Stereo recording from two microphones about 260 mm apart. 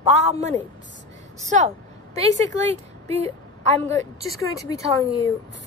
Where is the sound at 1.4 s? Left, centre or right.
Right.